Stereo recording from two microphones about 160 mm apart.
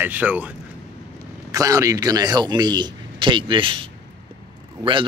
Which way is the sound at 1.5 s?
20° right (ahead or behind).